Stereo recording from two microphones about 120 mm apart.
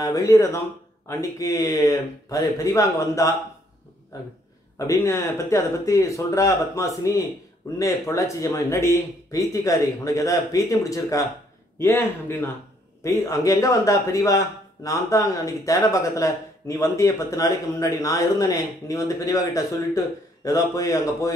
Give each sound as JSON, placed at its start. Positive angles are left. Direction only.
{"t": 0.0, "sound": "speech", "side_deg": 30}
{"t": 4.7, "sound": "speech", "side_deg": 25}